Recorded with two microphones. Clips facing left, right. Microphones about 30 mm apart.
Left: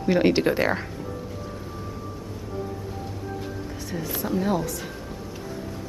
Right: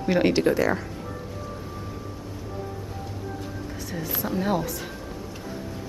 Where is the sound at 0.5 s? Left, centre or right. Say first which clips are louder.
Even; left.